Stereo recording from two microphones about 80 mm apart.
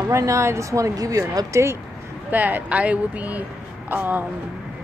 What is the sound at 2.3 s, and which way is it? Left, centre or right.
Speech, right.